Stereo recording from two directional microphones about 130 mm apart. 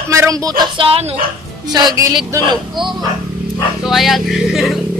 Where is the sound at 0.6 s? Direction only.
40° right (ahead or behind).